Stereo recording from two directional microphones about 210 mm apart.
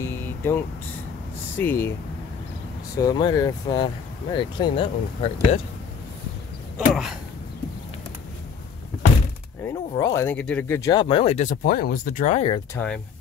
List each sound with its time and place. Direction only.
0.0 s vehicle: 10° left (ahead or behind)
1.6 s speech: 10° left (ahead or behind)
3.0 s speech: 20° left (ahead or behind)
6.9 s speech: centre (ahead or behind)
9.7 s speech: 15° left (ahead or behind)
12.7 s speech: 5° left (ahead or behind)